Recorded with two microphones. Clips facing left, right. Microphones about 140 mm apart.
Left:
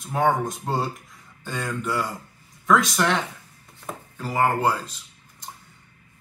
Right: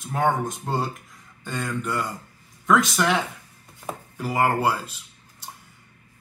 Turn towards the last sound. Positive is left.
turn(degrees=-10)  # may be behind; listen again after turning